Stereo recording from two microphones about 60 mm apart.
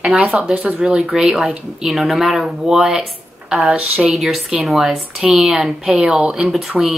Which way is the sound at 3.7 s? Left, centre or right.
Centre.